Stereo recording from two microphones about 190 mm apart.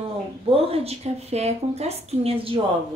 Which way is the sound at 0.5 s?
30° right (ahead or behind).